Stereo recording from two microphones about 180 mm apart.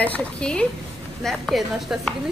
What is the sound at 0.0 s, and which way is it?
A woman's voice, 5° left (ahead or behind).